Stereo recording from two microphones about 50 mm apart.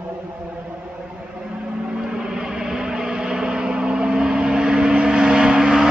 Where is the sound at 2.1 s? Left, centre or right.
Centre.